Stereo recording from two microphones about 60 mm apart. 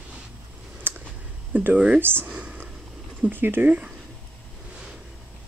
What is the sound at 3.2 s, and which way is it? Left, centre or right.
Speech, right.